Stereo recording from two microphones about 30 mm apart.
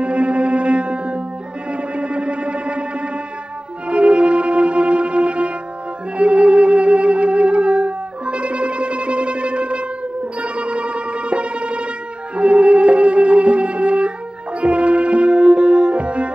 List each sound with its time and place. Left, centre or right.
0.0 s music: right
3.9 s music: right
6.1 s wind instrument: right
10.4 s music: right